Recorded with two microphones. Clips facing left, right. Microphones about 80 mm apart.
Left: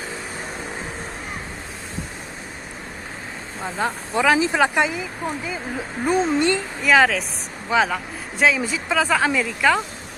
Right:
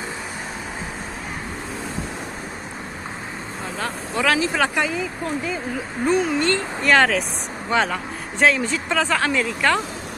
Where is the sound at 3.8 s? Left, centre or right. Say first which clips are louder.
Left 3 dB; centre.